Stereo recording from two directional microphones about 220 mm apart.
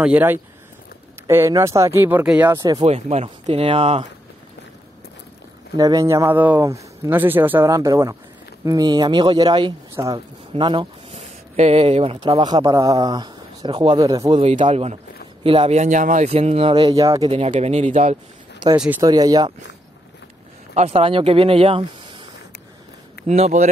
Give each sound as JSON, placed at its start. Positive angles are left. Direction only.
{"t": 0.0, "sound": "speech", "side_deg": -10}
{"t": 2.6, "sound": "speech", "side_deg": -25}
{"t": 5.8, "sound": "speech", "side_deg": -15}
{"t": 17.5, "sound": "speech", "side_deg": -30}
{"t": 18.8, "sound": "speech", "side_deg": -10}
{"t": 20.7, "sound": "speech", "side_deg": -30}
{"t": 23.2, "sound": "speech", "side_deg": -30}